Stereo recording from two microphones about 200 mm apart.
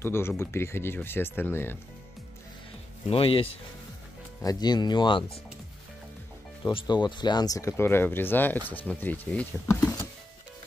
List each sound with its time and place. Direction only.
0.0 s speech: 10° left (ahead or behind)
3.1 s speech: 30° left (ahead or behind)
6.6 s speech: 20° left (ahead or behind)